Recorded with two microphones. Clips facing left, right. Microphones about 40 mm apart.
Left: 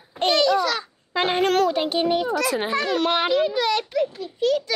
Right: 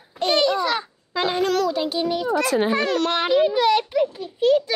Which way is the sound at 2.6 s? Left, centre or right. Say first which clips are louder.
Right 2 dB; centre.